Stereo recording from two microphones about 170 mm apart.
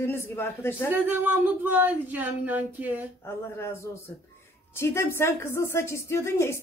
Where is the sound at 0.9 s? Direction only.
10° right (ahead or behind).